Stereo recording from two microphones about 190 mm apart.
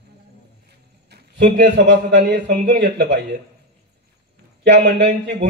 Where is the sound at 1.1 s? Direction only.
60° right (ahead or behind).